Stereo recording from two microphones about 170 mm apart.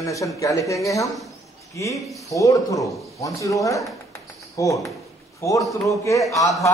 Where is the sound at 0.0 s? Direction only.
20° left (ahead or behind).